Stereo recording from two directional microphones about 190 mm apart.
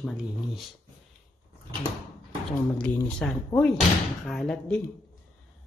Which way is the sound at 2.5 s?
5° left (ahead or behind).